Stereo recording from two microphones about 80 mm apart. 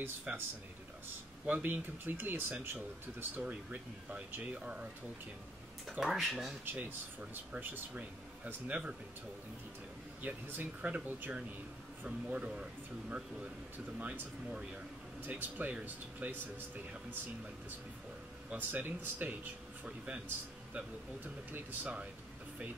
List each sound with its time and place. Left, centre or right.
0.3 s speech: centre
1.5 s speech: right
3.4 s speech: centre
5.9 s speech: centre
6.6 s speech: right
10.2 s speech: right
13.9 s speech: centre
18.5 s speech: right